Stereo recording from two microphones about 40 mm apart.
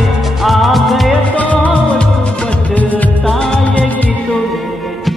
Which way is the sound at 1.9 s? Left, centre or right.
Left.